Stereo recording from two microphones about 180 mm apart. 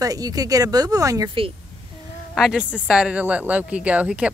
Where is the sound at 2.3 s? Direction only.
5° right (ahead or behind).